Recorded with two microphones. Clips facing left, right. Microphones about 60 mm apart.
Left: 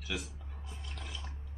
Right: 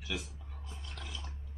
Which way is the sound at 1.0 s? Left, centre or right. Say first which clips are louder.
Right 1 dB; centre.